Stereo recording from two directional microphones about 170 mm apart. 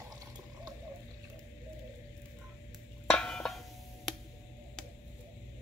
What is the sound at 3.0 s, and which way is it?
Music, 5° left (ahead or behind).